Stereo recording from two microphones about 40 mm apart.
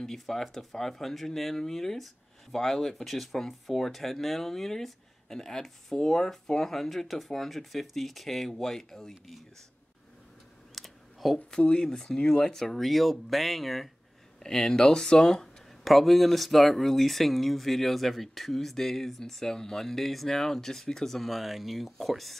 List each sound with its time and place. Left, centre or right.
0.0 s speech: centre
10.7 s computer keyboard: centre
11.7 s speech: centre
14.4 s speech: centre
15.8 s speech: centre